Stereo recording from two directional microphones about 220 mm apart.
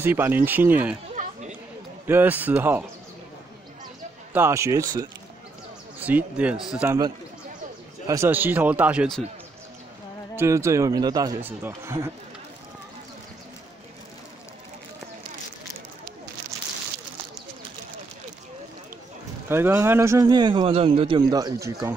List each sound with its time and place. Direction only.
0.0 s a man's voice: 10° right (ahead or behind)
1.1 s chatter: 30° right (ahead or behind)
2.0 s a man's voice: 10° right (ahead or behind)
4.3 s a man's voice: 10° right (ahead or behind)
8.1 s a man's voice: 10° right (ahead or behind)
10.3 s a man's voice: 10° right (ahead or behind)
19.5 s a man's voice: 10° right (ahead or behind)